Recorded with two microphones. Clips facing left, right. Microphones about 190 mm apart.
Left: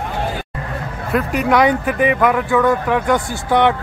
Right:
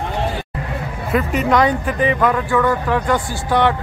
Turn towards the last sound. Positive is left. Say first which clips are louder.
# left 2 dB
turn(degrees=20)  # may be behind; listen again after turning